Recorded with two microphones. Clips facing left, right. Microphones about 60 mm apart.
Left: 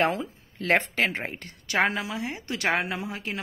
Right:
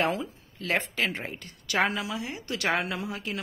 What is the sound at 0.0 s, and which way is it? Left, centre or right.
A woman's voice, left.